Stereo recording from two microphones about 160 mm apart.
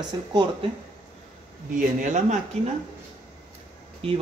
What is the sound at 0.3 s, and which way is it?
Speech, 30° right (ahead or behind).